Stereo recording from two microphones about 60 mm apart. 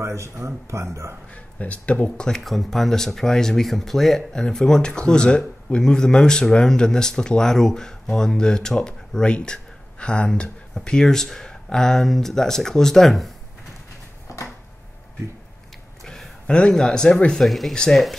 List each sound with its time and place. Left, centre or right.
0.0 s speech: right
1.3 s speech: left; by 13.3 s centre
16.1 s speech: centre